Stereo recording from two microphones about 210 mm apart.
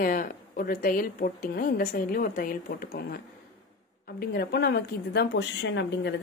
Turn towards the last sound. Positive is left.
turn(degrees=55)  # may be behind; listen again after turning